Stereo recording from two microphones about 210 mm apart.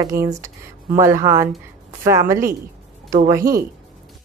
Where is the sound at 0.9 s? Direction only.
15° right (ahead or behind).